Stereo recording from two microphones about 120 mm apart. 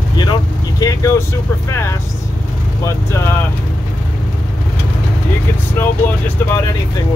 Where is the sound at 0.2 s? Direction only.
35° left (ahead or behind).